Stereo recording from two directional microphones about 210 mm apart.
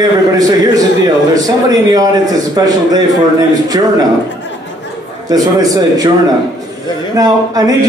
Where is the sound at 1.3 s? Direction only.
15° right (ahead or behind).